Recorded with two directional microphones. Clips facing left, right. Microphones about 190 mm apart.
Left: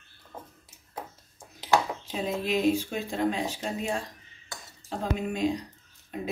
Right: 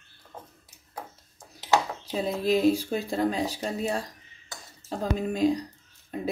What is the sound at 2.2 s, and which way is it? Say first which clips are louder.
Speech: right 3 dB; 35° right (ahead or behind).